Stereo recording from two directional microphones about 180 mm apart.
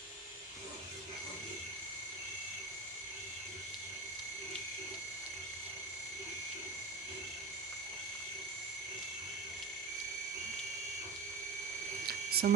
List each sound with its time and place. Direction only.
12.1 s mains hum: 60° right (ahead or behind)